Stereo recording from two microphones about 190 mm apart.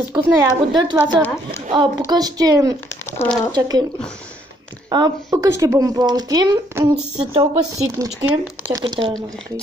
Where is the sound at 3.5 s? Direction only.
20° right (ahead or behind).